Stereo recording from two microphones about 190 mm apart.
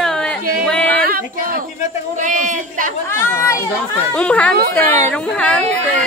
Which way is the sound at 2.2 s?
40° right (ahead or behind).